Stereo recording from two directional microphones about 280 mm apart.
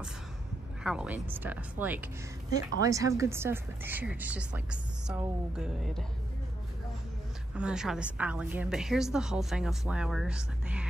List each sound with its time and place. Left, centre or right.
0.8 s a woman's voice: centre
7.5 s a woman's voice: centre